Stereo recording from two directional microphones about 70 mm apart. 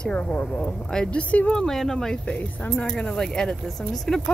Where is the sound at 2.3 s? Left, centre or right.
Left.